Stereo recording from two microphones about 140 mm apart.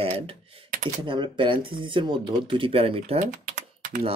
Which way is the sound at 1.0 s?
35° right (ahead or behind).